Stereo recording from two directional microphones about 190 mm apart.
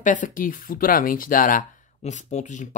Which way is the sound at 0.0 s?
40° left (ahead or behind).